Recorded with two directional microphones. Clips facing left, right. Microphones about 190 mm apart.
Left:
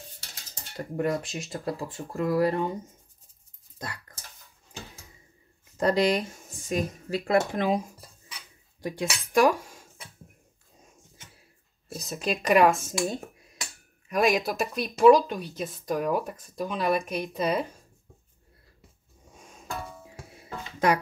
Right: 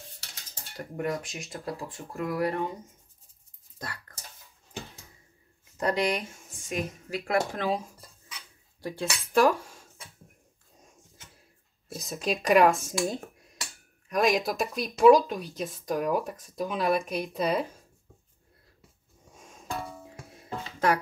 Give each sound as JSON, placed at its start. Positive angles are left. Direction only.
{"t": 0.7, "sound": "speech", "side_deg": 30}
{"t": 3.7, "sound": "a sound", "side_deg": 20}
{"t": 5.9, "sound": "speech", "side_deg": 35}
{"t": 7.5, "sound": "speech", "side_deg": 15}
{"t": 8.8, "sound": "speech", "side_deg": 15}
{"t": 11.9, "sound": "speech", "side_deg": 0}
{"t": 20.1, "sound": "music", "side_deg": 5}